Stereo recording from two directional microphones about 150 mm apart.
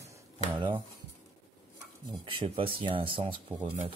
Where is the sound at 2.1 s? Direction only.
35° right (ahead or behind).